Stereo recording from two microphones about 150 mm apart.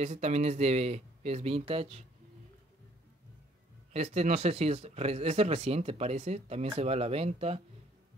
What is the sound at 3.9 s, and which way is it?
Speech, 45° right (ahead or behind).